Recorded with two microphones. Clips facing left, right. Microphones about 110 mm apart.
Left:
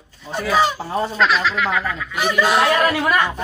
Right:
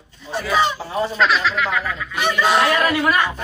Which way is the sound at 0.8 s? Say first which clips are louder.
Left 1 dB; 35° left (ahead or behind).